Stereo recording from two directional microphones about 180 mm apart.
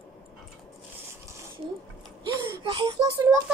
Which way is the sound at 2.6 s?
25° right (ahead or behind).